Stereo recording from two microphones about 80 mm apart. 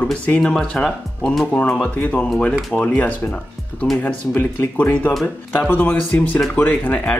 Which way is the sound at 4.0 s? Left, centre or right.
Left.